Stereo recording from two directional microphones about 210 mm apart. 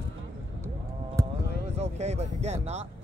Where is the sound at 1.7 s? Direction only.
30° right (ahead or behind).